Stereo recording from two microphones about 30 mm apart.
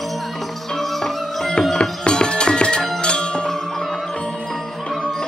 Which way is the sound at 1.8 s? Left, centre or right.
Left.